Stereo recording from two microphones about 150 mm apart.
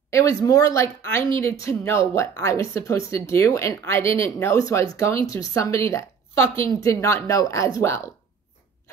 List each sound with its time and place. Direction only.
0.1 s speech: 20° left (ahead or behind)